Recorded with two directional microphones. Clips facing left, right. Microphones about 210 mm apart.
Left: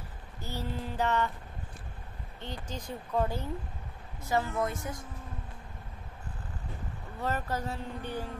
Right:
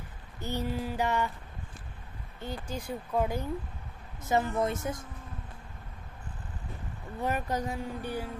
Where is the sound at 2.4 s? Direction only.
10° right (ahead or behind).